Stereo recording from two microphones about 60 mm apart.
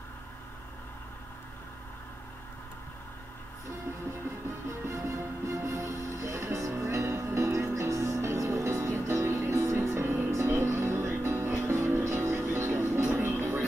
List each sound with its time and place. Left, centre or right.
4.8 s music: right